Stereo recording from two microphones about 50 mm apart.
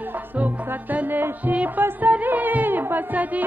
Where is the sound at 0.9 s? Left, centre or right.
Right.